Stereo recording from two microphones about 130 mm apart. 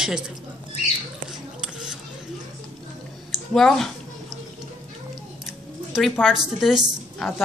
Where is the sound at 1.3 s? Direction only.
5° right (ahead or behind).